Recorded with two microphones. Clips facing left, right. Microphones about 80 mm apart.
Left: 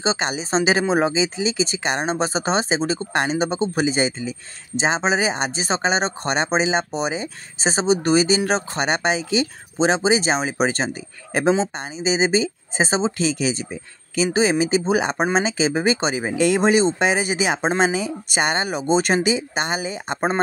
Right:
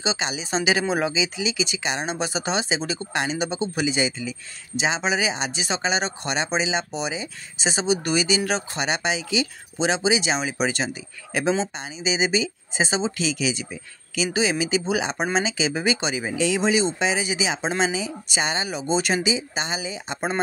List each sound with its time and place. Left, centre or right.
0.0 s speech: left